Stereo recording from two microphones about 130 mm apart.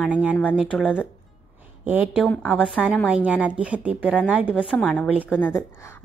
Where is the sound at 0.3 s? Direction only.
15° left (ahead or behind).